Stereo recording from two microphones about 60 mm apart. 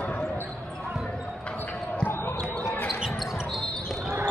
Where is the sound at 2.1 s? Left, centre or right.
Left.